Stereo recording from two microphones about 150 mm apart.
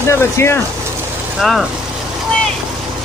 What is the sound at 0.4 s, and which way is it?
Speech, 20° left (ahead or behind).